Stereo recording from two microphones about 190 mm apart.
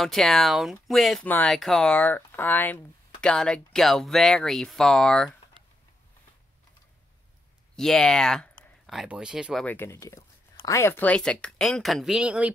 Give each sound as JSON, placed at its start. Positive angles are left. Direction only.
{"t": 0.0, "sound": "speech", "side_deg": 0}
{"t": 7.7, "sound": "speech", "side_deg": 0}